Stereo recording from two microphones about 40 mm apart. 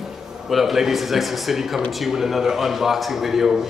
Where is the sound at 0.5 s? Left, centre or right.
Centre.